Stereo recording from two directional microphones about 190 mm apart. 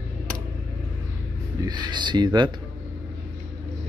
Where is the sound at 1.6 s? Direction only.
25° right (ahead or behind).